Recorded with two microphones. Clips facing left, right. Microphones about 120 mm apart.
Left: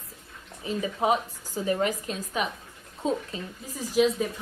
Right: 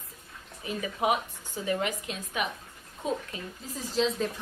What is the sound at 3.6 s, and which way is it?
Speech, 10° left (ahead or behind).